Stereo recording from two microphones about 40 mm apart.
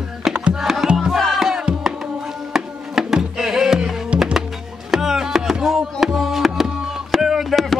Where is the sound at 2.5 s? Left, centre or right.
Centre.